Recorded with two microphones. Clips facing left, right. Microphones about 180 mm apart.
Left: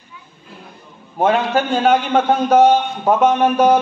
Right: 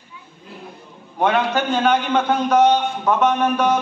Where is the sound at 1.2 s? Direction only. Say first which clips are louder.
Left 2 dB; 40° left (ahead or behind).